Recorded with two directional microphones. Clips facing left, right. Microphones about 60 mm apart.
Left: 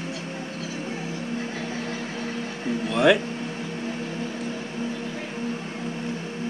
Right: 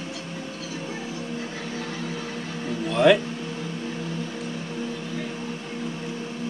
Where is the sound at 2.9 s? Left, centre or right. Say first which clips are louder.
Right 1 dB; centre.